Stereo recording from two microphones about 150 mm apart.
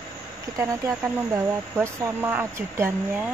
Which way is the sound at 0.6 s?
20° right (ahead or behind).